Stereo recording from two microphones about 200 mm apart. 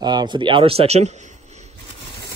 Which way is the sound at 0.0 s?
20° right (ahead or behind).